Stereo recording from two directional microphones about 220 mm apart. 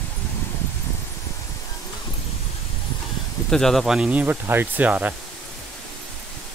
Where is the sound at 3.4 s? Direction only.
Centre (ahead or behind).